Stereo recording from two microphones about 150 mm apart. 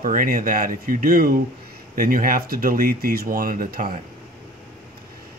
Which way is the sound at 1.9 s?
70° right (ahead or behind).